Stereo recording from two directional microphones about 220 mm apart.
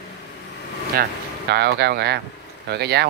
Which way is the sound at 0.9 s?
45° right (ahead or behind).